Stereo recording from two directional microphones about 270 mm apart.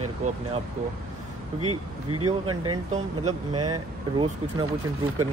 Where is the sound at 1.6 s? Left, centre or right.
Right.